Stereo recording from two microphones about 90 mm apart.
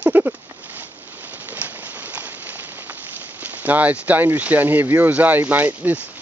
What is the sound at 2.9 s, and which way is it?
Speech, 15° right (ahead or behind).